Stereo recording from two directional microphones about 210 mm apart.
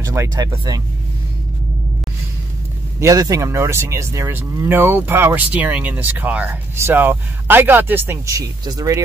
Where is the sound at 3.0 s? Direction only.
15° right (ahead or behind).